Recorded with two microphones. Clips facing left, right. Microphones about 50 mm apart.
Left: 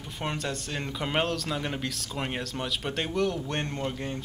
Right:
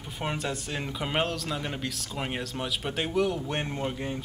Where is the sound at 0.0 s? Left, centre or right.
Centre.